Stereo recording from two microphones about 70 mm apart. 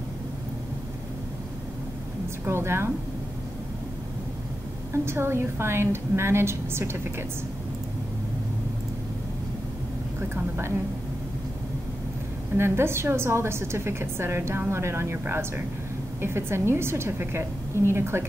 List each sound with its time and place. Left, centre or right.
2.4 s a woman's voice: right
4.9 s a woman's voice: right
12.5 s a woman's voice: right